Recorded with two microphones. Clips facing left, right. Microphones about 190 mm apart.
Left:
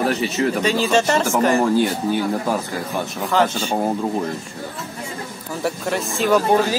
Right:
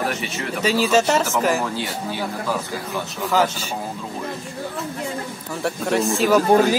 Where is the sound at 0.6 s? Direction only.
5° right (ahead or behind).